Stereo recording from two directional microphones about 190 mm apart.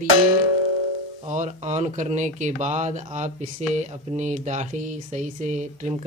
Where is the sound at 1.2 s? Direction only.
40° right (ahead or behind).